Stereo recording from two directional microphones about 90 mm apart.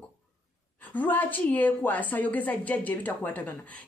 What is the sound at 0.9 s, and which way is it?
A woman's voice, 20° left (ahead or behind).